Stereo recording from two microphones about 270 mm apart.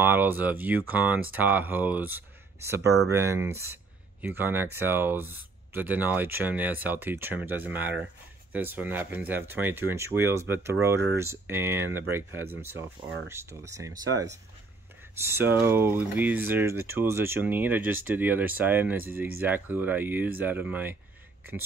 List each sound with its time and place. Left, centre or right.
0.0 s speech: centre